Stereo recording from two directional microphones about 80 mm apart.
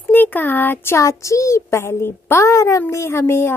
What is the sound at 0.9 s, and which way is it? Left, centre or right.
A woman's voice, left.